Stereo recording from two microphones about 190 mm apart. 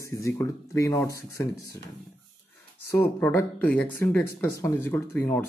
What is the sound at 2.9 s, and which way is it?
Speech, 10° left (ahead or behind).